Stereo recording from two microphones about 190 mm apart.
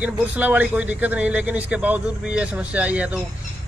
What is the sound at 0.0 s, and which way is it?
A man's voice, 10° right (ahead or behind).